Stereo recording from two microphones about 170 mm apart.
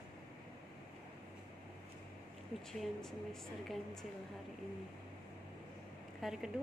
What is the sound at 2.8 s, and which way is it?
A woman's voice, 5° left (ahead or behind).